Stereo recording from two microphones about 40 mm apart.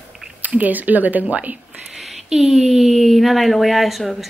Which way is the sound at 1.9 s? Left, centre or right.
Centre.